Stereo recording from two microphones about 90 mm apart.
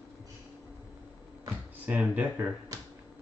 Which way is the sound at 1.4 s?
15° right (ahead or behind).